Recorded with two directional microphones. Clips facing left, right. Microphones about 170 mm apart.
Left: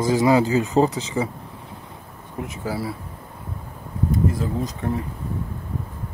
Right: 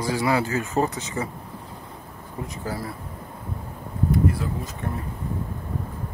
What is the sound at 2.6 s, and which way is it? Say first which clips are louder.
Speech: left 4 dB; 5° left (ahead or behind).